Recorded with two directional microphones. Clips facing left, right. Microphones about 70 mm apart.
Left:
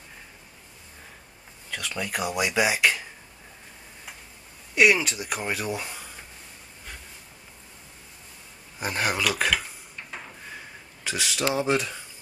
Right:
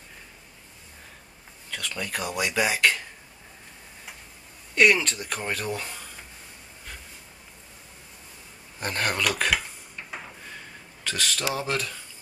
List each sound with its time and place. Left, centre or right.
1.7 s speech: centre
4.7 s speech: centre
8.7 s dishes: centre
10.4 s a sound: centre
11.5 s speech: centre